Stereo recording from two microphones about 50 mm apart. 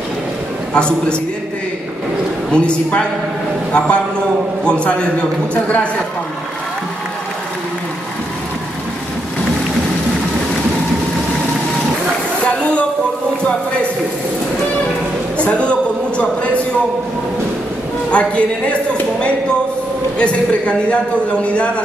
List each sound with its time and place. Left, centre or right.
0.7 s a man's voice: left
2.5 s a man's voice: left
12.4 s a sound: left
15.3 s speech: left
18.1 s a man's voice: left
20.2 s a man's voice: left